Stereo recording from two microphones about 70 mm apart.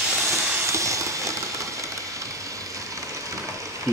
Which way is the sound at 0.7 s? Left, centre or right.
Right.